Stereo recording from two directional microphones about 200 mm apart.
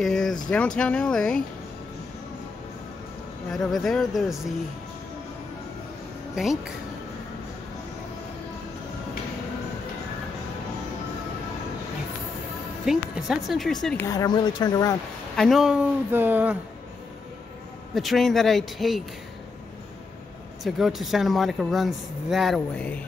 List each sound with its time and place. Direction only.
0.0 s a sound: centre (ahead or behind)
0.5 s speech: 5° left (ahead or behind)
3.5 s speech: centre (ahead or behind)
6.3 s speech: centre (ahead or behind)
12.8 s speech: 5° right (ahead or behind)
14.0 s speech: 20° left (ahead or behind)
15.3 s speech: centre (ahead or behind)
17.9 s speech: centre (ahead or behind)
20.6 s speech: centre (ahead or behind)